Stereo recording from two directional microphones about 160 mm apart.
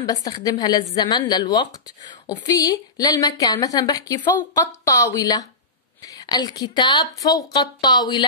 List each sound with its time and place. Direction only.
0.0 s a woman's voice: 25° left (ahead or behind)